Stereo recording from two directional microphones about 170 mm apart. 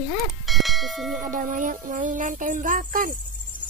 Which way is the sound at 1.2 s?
50° right (ahead or behind).